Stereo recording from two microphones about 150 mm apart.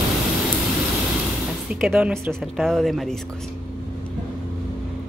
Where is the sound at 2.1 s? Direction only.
Centre (ahead or behind).